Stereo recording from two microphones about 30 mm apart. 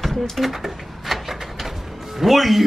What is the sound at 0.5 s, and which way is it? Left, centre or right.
Music, centre.